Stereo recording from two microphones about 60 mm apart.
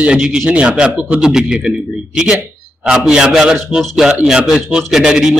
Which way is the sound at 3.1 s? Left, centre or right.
Centre.